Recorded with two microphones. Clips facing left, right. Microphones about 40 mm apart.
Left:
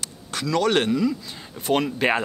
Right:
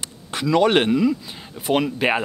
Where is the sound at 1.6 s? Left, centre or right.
Centre.